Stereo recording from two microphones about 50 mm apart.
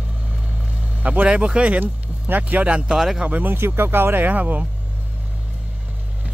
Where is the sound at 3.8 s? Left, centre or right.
Right.